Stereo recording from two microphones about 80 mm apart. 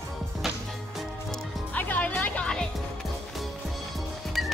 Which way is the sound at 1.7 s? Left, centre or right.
Centre.